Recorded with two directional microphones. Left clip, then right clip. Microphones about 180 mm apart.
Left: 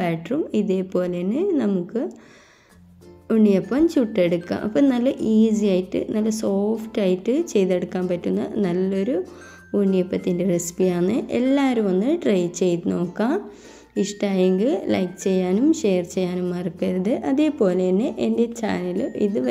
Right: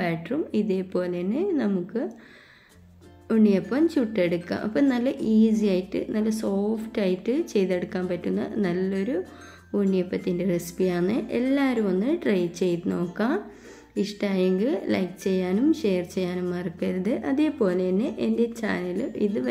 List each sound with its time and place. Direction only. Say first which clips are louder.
0.0 s a woman's voice: left 4 dB; 30° left (ahead or behind)
3.3 s a woman's voice: left 4 dB; 30° left (ahead or behind)